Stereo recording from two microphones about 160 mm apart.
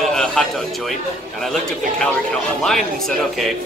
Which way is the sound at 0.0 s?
5° left (ahead or behind).